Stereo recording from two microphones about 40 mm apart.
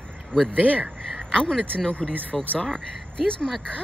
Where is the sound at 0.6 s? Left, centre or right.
Right.